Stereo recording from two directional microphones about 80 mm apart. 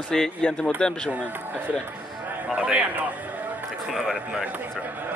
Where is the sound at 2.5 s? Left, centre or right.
Centre.